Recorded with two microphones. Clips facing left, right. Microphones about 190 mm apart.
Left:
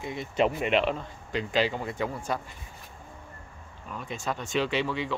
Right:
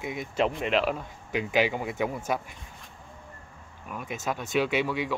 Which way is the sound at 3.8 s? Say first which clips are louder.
Right 1 dB; 10° right (ahead or behind).